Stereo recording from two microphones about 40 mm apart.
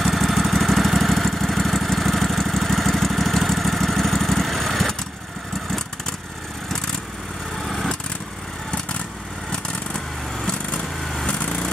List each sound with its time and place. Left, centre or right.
0.0 s vehicle: centre
7.6 s lawn mower: centre
11.2 s vehicle: left